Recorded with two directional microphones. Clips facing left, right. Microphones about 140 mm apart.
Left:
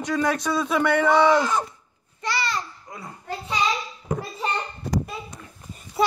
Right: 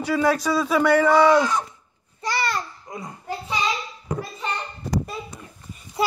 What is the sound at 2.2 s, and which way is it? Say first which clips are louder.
Babbling: right 2 dB; 50° right (ahead or behind).